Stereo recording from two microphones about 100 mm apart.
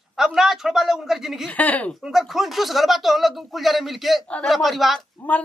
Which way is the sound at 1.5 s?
15° left (ahead or behind).